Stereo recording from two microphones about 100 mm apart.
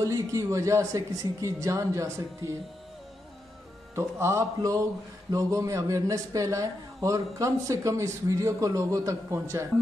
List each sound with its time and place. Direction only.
0.0 s speech: 30° right (ahead or behind)
3.9 s a man's voice: 30° right (ahead or behind)